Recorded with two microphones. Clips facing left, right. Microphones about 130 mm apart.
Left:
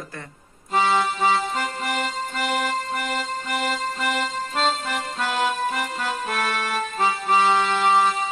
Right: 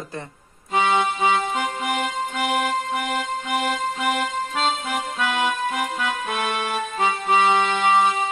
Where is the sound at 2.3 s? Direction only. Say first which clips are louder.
Right 2 dB; 50° right (ahead or behind).